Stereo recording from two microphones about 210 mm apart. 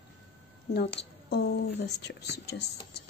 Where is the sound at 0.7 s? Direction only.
50° left (ahead or behind).